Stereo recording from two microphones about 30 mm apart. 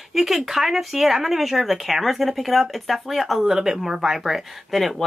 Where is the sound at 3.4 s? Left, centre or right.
Centre.